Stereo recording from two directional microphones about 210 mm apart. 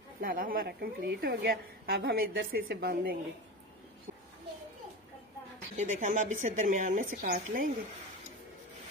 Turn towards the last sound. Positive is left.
turn(degrees=-45)  # may be behind; listen again after turning